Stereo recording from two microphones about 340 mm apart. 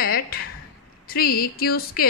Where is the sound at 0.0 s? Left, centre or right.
Left.